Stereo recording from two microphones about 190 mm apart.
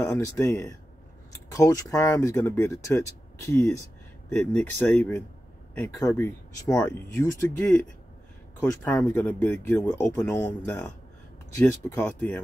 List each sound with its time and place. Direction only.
0.0 s speech: 15° left (ahead or behind)